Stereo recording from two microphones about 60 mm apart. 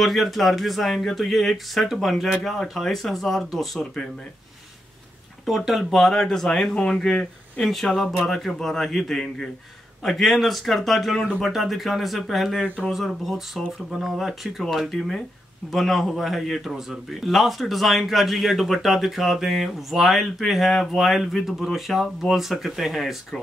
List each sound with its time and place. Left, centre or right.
0.0 s a man's voice: centre
5.7 s a man's voice: centre